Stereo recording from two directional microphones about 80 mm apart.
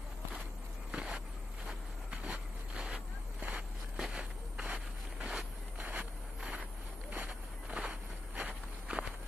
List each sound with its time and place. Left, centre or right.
0.9 s a sound: centre
1.7 s vehicle: centre
3.3 s a sound: right
3.9 s walk: centre
5.3 s vehicle: centre
7.1 s walk: centre